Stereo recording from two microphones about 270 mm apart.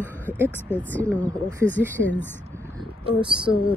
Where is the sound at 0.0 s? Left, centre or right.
Centre.